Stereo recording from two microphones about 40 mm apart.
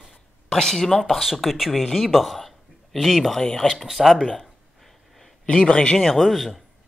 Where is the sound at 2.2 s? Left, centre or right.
Centre.